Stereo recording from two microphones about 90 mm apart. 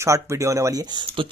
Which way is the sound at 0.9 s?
70° right (ahead or behind).